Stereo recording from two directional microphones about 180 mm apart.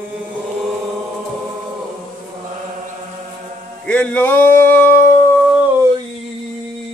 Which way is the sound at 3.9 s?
10° left (ahead or behind).